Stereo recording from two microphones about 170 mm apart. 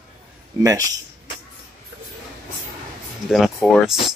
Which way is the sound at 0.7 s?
20° right (ahead or behind).